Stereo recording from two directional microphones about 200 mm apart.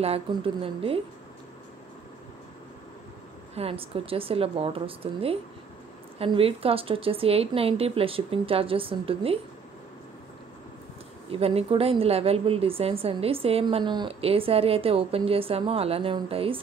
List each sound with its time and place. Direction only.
0.0 s speech: 30° right (ahead or behind)
3.5 s speech: 30° right (ahead or behind)
11.2 s speech: 30° right (ahead or behind)